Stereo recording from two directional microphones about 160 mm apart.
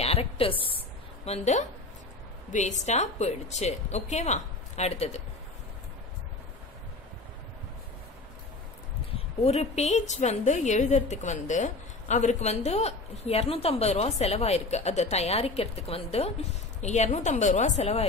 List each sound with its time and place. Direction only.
0.0 s a woman's voice: 40° left (ahead or behind)
9.4 s a woman's voice: 40° left (ahead or behind)